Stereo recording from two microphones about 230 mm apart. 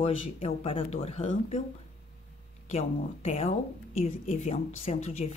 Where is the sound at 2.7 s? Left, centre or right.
Left.